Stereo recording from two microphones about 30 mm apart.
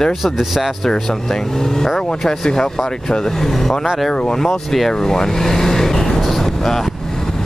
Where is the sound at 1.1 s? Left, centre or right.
Centre.